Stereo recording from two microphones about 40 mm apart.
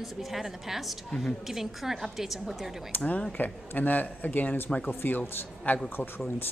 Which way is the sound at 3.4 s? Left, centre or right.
Left.